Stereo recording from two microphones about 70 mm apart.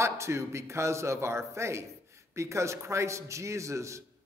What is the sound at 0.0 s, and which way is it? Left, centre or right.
A man's voice, right.